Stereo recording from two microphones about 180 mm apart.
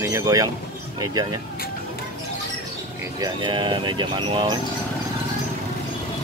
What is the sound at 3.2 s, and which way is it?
Speech, 25° right (ahead or behind).